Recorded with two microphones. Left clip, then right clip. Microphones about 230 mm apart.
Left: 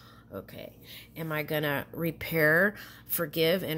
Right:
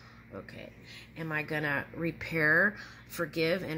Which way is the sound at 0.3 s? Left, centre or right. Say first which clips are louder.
Left 3 dB; left.